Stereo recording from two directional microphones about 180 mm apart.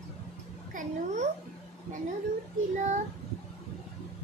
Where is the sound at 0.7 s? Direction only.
40° right (ahead or behind).